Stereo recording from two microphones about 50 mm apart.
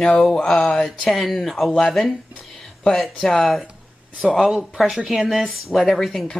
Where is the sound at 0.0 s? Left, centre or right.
Centre.